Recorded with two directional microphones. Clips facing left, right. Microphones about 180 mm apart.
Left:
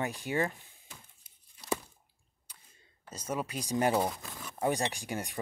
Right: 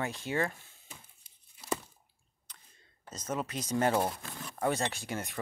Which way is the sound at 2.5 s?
10° left (ahead or behind).